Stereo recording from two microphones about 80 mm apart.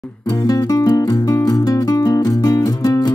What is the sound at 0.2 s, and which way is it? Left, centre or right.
Music, left.